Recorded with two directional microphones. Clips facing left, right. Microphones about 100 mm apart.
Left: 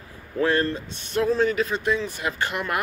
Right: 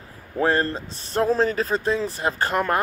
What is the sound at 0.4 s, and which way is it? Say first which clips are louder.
Speech: right 1 dB; 35° right (ahead or behind).